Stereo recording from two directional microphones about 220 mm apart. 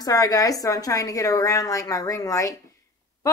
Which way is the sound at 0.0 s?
15° left (ahead or behind).